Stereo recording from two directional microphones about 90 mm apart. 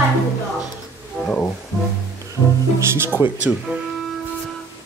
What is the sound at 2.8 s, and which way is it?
Speech, 25° right (ahead or behind).